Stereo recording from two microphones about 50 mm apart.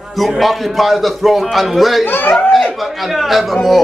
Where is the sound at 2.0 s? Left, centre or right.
Left.